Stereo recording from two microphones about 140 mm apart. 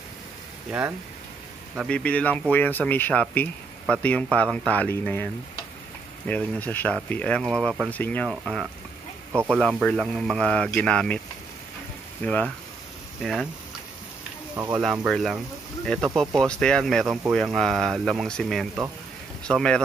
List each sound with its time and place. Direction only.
0.7 s speech: 15° right (ahead or behind)
1.9 s speech: 10° left (ahead or behind)
9.3 s speech: 15° right (ahead or behind)
9.6 s speech: centre (ahead or behind)
12.3 s speech: 5° left (ahead or behind)
14.8 s speech: 5° right (ahead or behind)